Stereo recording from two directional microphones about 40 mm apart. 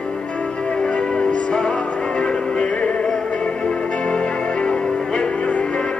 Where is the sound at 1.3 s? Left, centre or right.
Left.